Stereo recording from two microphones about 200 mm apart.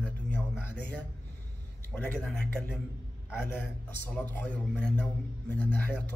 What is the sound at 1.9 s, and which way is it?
Speech, 5° left (ahead or behind).